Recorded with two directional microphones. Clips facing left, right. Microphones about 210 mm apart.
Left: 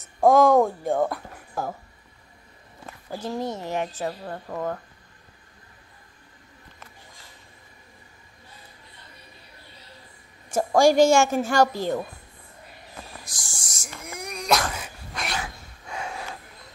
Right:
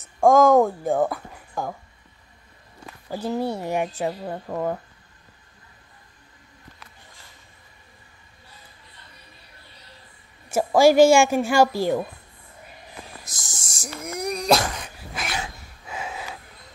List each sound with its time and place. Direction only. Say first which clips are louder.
0.0 s speech: right 1 dB; centre (ahead or behind)
3.2 s speech: right 4 dB; 5° right (ahead or behind)
10.5 s speech: right 2 dB; 5° right (ahead or behind)
13.2 s a sound: even; 20° right (ahead or behind)
14.0 s speech: right 6 dB; 40° right (ahead or behind)
14.7 s cat: right 1 dB; centre (ahead or behind)
15.9 s snort: even; 5° right (ahead or behind)